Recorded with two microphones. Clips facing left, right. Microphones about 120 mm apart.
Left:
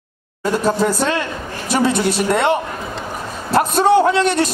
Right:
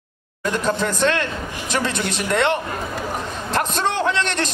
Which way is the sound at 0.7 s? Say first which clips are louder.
Left 6 dB; 40° left (ahead or behind).